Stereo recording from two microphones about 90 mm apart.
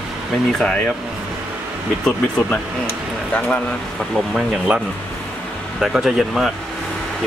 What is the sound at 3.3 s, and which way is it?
Speech, 15° left (ahead or behind).